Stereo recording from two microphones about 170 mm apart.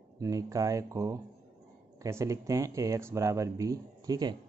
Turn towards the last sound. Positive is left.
turn(degrees=-25)  # may be behind; listen again after turning